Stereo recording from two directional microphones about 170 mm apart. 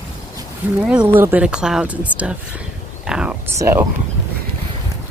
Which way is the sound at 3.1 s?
5° right (ahead or behind).